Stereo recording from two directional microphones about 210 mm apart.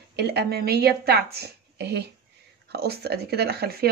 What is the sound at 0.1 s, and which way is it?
Speech, 50° right (ahead or behind).